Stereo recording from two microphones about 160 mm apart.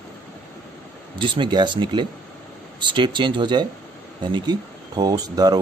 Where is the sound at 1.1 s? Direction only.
30° right (ahead or behind).